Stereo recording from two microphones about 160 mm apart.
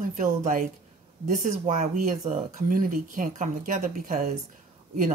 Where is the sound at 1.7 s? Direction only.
55° right (ahead or behind).